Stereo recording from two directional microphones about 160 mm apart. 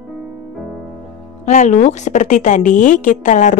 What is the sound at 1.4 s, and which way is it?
A woman's voice, 50° left (ahead or behind).